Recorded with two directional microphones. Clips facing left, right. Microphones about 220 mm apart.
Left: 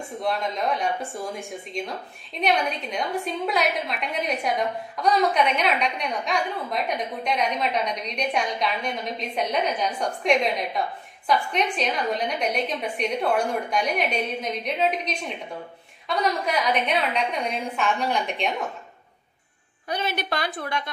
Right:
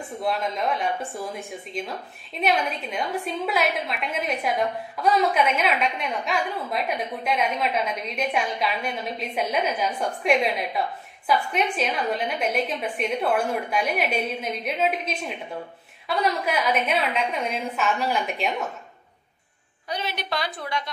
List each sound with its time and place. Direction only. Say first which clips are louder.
0.2 s a woman's voice: even; centre (ahead or behind)
19.9 s a woman's voice: left 2 dB; 50° left (ahead or behind)